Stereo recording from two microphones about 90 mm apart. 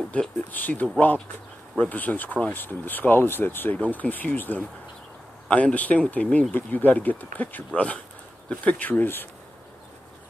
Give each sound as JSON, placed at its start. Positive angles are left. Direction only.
{"t": 0.1, "sound": "speech", "side_deg": 15}